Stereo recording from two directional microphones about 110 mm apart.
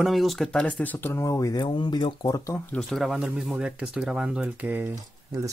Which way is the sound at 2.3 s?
30° left (ahead or behind).